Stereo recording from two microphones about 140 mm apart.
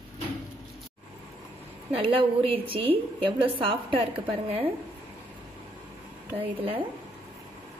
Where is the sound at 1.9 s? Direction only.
40° right (ahead or behind).